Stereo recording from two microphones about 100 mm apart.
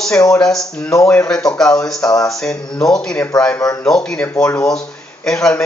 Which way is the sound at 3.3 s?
40° left (ahead or behind).